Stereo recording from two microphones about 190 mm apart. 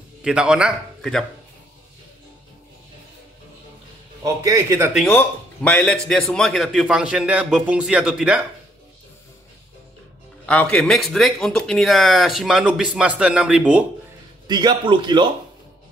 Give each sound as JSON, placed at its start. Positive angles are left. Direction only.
{"t": 0.2, "sound": "a man's voice", "side_deg": -5}
{"t": 4.2, "sound": "a man's voice", "side_deg": -15}
{"t": 4.9, "sound": "speech", "side_deg": 5}
{"t": 10.4, "sound": "speech", "side_deg": 5}
{"t": 14.5, "sound": "a man's voice", "side_deg": -20}